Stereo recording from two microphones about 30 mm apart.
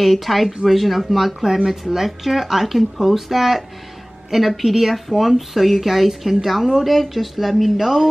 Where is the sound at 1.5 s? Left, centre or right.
Centre.